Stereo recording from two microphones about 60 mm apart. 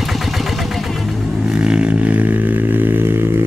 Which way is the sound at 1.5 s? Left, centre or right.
Centre.